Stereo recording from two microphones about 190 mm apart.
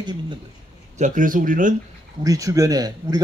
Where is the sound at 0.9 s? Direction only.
40° right (ahead or behind).